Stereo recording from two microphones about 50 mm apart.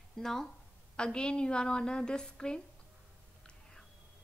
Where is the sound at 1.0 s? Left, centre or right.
Centre.